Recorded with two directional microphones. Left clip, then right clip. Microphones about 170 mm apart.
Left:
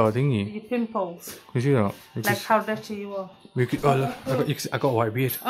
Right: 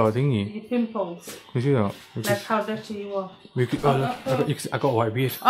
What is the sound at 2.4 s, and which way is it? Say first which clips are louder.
Speech: left 3 dB; 25° left (ahead or behind).